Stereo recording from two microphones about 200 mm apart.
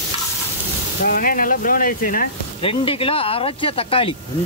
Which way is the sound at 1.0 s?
45° left (ahead or behind).